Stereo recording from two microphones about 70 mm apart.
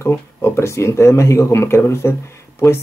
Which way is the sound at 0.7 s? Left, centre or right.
Left.